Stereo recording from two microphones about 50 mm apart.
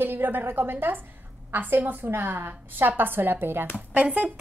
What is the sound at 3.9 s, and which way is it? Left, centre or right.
Speech, right.